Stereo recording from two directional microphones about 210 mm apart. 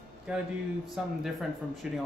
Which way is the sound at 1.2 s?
Centre (ahead or behind).